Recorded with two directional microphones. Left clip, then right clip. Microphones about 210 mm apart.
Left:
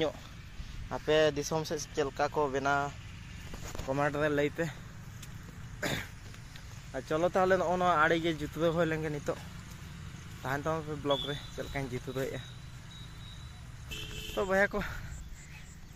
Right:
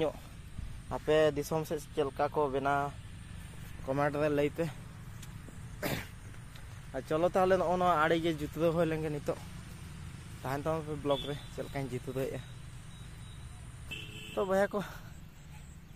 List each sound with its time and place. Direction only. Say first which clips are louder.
0.8 s speech: even; centre (ahead or behind)
5.8 s cough: left 2 dB; centre (ahead or behind)
6.9 s speech: even; 5° right (ahead or behind)
10.4 s speech: left 1 dB; centre (ahead or behind)
14.3 s speech: left 1 dB; centre (ahead or behind)